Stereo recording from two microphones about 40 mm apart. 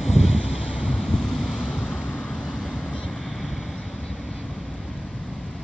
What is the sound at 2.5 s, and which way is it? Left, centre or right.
Vehicle, centre.